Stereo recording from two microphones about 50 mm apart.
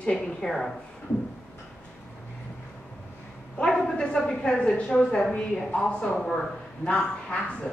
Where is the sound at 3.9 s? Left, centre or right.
Centre.